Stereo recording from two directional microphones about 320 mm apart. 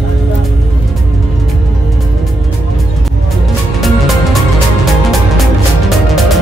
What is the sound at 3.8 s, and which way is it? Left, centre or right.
Music, centre.